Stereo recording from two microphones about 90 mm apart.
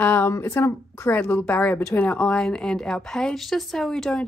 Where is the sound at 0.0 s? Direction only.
20° left (ahead or behind).